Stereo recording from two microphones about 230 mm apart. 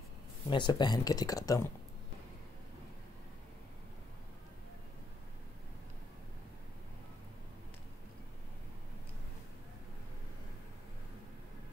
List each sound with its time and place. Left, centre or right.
0.5 s speech: centre